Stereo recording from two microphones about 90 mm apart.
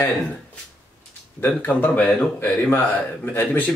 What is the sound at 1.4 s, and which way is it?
Speech, 20° left (ahead or behind).